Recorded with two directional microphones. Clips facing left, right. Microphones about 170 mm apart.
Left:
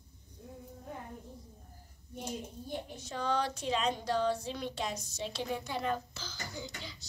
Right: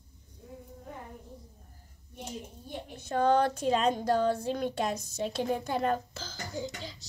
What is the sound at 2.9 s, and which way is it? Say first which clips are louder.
Speech: right 9 dB; 55° right (ahead or behind).